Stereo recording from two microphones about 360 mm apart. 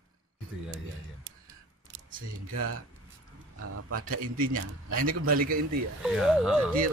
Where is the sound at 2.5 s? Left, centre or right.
Right.